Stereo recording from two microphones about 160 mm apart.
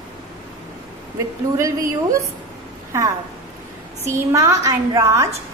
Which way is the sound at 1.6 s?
20° right (ahead or behind).